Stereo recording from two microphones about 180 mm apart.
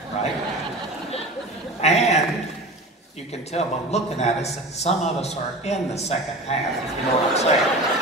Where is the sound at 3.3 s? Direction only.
35° left (ahead or behind).